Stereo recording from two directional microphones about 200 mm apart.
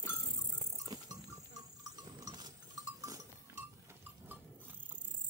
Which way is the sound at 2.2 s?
20° right (ahead or behind).